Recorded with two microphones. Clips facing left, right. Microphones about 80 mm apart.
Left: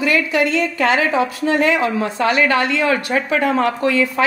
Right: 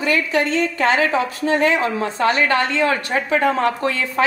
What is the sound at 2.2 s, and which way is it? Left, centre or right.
A woman's voice, right.